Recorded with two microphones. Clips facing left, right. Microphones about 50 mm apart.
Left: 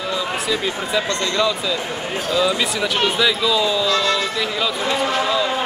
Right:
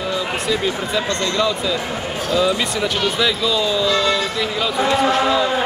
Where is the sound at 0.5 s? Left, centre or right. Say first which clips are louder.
Right 3 dB; centre.